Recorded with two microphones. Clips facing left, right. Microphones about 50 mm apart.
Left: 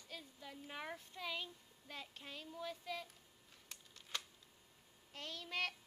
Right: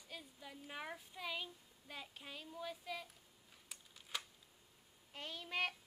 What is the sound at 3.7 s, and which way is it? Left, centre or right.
Camera, centre.